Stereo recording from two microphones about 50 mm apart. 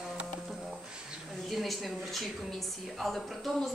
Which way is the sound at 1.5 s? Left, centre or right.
Centre.